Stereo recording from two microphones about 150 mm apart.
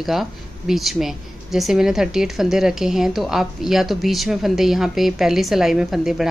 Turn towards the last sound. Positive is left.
turn(degrees=0)  # may be behind; listen again after turning